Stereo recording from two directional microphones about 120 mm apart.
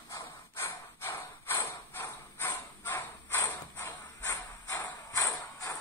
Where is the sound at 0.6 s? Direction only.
20° left (ahead or behind).